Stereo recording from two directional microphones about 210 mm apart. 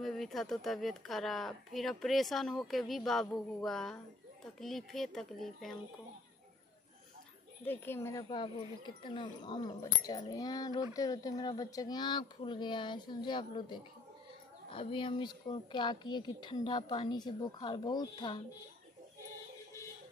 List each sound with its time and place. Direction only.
0.0 s speech: centre (ahead or behind)
7.6 s a woman's voice: 10° left (ahead or behind)